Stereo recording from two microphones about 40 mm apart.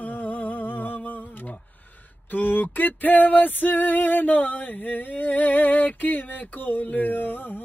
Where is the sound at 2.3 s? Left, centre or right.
Left.